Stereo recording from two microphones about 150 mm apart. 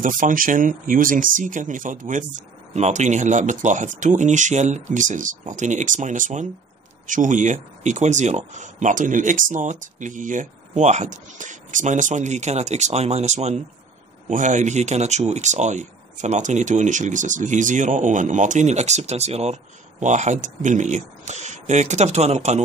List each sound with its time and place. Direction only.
0.0 s speech: 65° right (ahead or behind)